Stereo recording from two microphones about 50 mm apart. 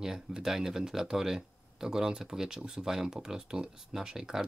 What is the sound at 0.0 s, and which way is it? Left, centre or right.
Speech, centre.